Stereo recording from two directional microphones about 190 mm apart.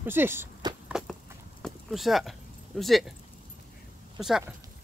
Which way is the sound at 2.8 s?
Centre (ahead or behind).